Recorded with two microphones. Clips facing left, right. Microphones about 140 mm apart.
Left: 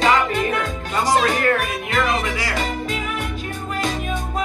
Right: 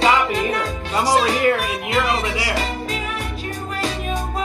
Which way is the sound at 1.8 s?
35° right (ahead or behind).